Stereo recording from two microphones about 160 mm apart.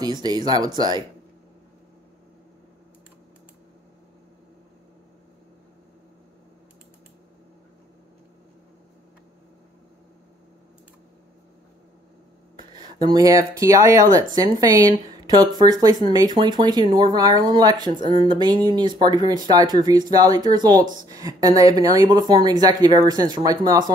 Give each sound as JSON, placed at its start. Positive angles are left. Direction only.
{"t": 0.0, "sound": "speech", "side_deg": -25}
{"t": 12.7, "sound": "speech", "side_deg": -25}